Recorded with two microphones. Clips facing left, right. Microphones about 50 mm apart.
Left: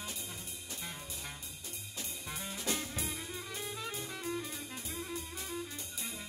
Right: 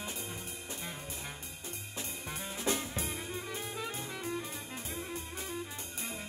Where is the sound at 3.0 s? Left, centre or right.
Right.